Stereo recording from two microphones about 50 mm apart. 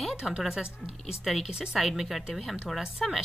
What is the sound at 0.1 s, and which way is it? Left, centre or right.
Speech, centre.